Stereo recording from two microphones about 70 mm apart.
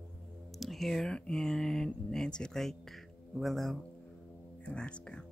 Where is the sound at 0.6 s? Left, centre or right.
Centre.